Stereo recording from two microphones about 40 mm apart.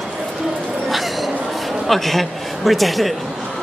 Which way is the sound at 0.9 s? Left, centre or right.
Centre.